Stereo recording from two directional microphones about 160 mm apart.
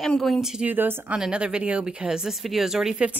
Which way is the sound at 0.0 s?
Centre (ahead or behind).